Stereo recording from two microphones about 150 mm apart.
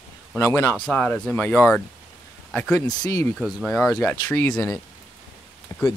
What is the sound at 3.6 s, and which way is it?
Speech, 5° left (ahead or behind).